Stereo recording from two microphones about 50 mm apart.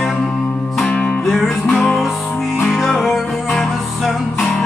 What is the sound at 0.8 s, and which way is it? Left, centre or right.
Music, left.